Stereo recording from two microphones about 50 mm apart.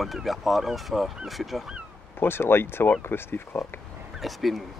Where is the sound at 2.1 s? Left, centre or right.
Left.